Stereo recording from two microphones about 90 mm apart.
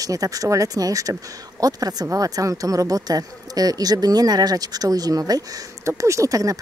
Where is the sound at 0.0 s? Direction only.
40° right (ahead or behind).